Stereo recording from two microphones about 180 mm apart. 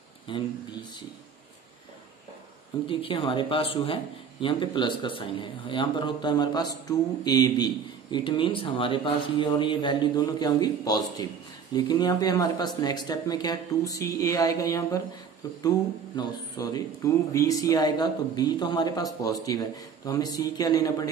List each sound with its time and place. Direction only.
0.3 s speech: 25° left (ahead or behind)
2.9 s speech: 30° left (ahead or behind)